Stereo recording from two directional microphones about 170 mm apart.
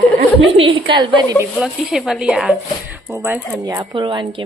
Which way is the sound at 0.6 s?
30° right (ahead or behind).